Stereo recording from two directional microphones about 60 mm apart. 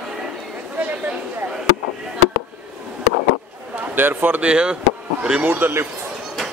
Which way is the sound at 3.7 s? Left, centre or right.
Right.